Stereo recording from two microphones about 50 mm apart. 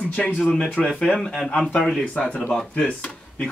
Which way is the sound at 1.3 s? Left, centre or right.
Centre.